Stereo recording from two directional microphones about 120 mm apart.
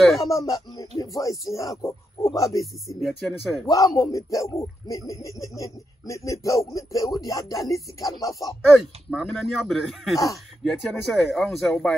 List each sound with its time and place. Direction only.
0.2 s speech: 30° left (ahead or behind)
3.0 s speech: centre (ahead or behind)
3.6 s speech: 30° left (ahead or behind)
8.6 s speech: centre (ahead or behind)